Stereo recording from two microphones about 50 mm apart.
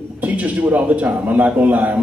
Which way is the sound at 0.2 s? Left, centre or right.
Right.